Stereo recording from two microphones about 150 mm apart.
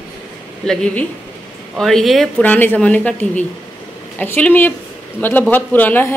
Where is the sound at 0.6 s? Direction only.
5° left (ahead or behind).